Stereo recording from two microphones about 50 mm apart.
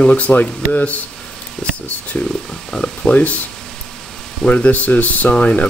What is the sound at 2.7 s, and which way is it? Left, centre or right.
Speech, centre.